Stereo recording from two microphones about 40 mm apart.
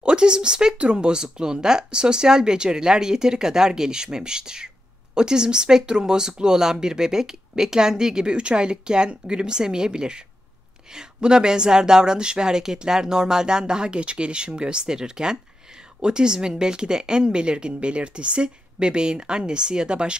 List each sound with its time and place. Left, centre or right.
0.0 s speech: right